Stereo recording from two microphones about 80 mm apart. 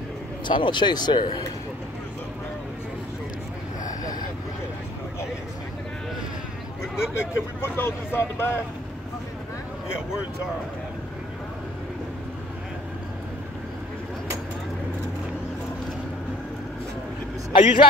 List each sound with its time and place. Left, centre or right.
0.5 s speech: left
7.2 s speech: left
17.5 s a man's voice: left